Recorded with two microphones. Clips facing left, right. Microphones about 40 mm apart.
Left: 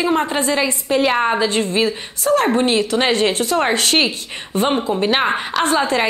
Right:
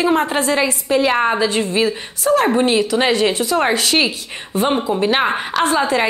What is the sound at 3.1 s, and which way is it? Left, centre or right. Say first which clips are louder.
Speech: right 1 dB; left.